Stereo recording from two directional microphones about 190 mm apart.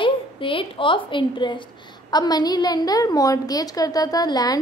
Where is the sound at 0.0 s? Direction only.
25° left (ahead or behind).